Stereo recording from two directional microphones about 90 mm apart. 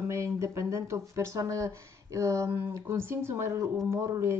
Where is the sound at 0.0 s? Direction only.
30° right (ahead or behind).